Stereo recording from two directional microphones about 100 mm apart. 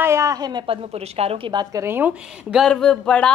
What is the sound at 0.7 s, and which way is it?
Speech, 90° right.